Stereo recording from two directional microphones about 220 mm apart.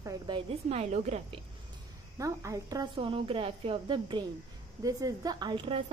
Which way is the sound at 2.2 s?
15° right (ahead or behind).